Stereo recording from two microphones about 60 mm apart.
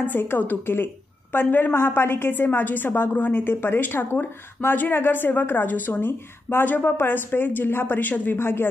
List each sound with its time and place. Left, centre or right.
0.0 s a woman's voice: left